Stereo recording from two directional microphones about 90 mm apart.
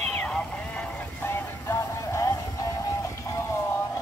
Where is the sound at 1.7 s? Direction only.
35° left (ahead or behind).